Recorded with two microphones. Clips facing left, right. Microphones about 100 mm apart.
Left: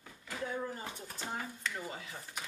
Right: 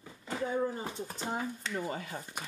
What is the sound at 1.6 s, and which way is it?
Speech, 45° right (ahead or behind).